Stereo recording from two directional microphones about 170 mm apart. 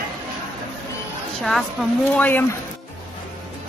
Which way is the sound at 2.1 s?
10° left (ahead or behind).